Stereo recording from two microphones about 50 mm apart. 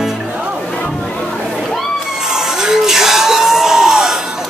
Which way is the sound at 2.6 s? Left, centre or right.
Centre.